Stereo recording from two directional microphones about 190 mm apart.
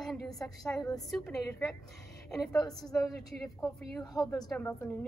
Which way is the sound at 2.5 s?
20° left (ahead or behind).